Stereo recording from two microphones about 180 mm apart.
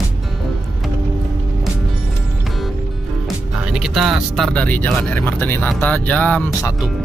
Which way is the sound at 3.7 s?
Centre (ahead or behind).